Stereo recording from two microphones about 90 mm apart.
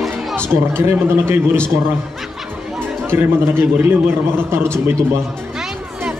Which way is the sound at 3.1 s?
25° right (ahead or behind).